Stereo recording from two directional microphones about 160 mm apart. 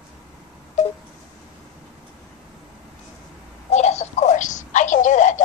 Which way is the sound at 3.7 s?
45° left (ahead or behind).